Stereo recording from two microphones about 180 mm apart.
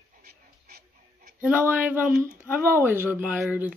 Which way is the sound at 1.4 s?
10° right (ahead or behind).